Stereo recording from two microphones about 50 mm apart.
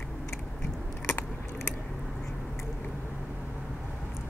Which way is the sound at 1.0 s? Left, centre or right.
Left.